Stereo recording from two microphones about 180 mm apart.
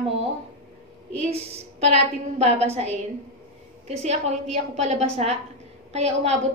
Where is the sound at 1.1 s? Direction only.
35° right (ahead or behind).